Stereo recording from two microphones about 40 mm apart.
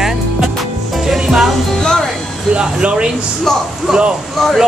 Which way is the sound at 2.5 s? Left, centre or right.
Right.